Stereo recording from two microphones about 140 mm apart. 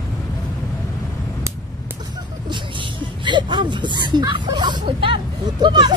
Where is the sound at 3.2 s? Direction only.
35° right (ahead or behind).